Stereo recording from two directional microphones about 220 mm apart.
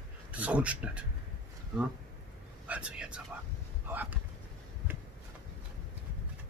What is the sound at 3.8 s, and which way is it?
Boat, 10° right (ahead or behind).